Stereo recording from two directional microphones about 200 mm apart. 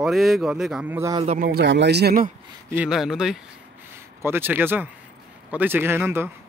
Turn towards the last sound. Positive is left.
turn(degrees=-10)  # may be behind; listen again after turning